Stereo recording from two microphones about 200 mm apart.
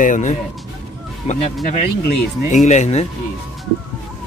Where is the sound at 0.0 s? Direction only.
40° left (ahead or behind).